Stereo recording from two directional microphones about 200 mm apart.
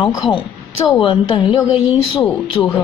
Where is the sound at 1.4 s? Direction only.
25° left (ahead or behind).